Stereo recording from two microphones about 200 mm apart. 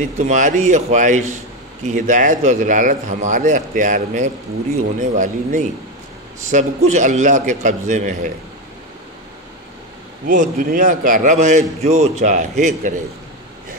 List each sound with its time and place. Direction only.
0.2 s a man's voice: 40° right (ahead or behind)
10.2 s a man's voice: 40° right (ahead or behind)